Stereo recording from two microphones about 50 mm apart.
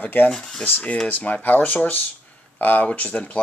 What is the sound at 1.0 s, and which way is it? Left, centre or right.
Speech, left.